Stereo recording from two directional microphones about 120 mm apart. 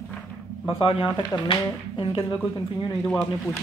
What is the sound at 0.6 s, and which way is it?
Speech, 50° left (ahead or behind).